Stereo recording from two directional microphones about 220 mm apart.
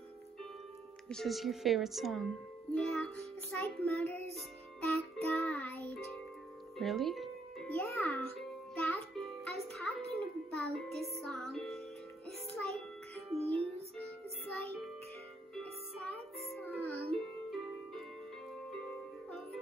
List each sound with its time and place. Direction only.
1.0 s speech: centre (ahead or behind)
3.5 s child singing: 5° left (ahead or behind)
4.8 s music: centre (ahead or behind)
13.4 s music: 30° right (ahead or behind)
15.5 s music: 5° left (ahead or behind)